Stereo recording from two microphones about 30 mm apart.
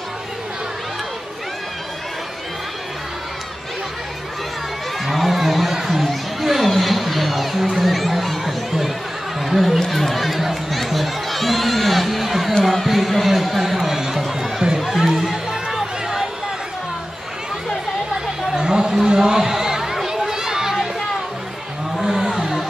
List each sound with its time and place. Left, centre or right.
5.0 s a sound: centre
6.0 s crowd: centre
9.4 s chatter: centre
9.8 s music: centre
14.9 s run: centre
15.2 s music: centre
18.1 s chatter: right
19.0 s a sound: right
21.9 s a sound: centre